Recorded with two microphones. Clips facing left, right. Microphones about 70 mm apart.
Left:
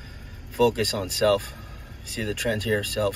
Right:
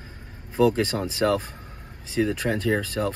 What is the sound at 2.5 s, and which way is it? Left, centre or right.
Speech, centre.